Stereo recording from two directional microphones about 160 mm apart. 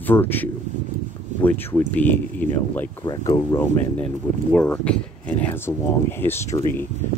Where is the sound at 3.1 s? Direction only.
25° left (ahead or behind).